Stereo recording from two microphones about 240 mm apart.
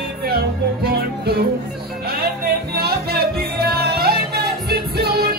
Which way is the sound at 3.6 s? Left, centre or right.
Right.